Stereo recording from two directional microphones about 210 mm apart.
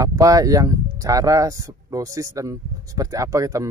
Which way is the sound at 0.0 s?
15° right (ahead or behind).